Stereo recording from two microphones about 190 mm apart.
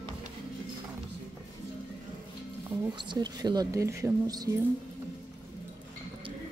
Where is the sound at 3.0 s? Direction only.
20° right (ahead or behind).